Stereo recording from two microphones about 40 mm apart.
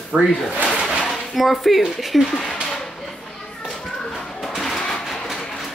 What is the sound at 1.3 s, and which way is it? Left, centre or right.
Speech, centre.